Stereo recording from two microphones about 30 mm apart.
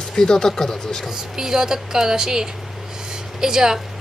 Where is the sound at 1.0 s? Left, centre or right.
Centre.